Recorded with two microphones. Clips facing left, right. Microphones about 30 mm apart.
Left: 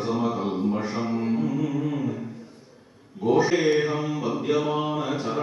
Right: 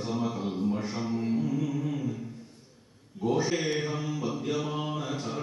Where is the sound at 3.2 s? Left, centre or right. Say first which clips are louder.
Left 7 dB; left.